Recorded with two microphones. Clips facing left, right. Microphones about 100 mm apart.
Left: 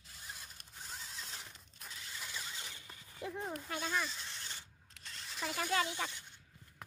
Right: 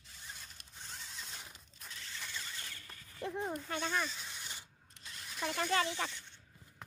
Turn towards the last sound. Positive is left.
turn(degrees=10)  # may be behind; listen again after turning